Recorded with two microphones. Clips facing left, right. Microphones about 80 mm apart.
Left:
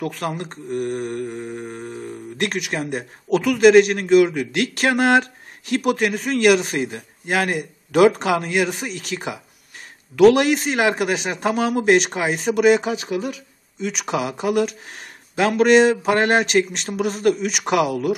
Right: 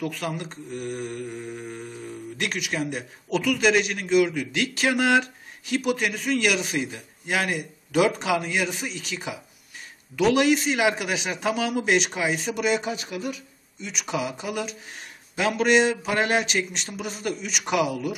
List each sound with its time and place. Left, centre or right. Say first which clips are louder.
0.0 s speech: left 4 dB; left
1.4 s a sound: left 4 dB; left
1.9 s speech: left 4 dB; left
13.9 s speech: left 2 dB; left